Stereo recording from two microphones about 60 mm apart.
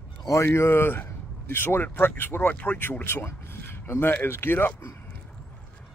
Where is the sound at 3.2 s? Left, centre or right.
Left.